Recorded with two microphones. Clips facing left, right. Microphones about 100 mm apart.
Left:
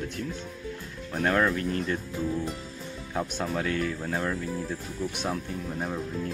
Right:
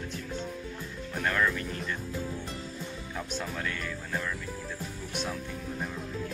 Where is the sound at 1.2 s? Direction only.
45° left (ahead or behind).